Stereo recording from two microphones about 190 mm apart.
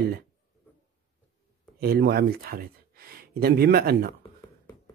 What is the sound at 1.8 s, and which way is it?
Speech, 55° right (ahead or behind).